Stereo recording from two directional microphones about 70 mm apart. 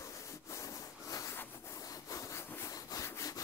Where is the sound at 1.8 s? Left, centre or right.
Left.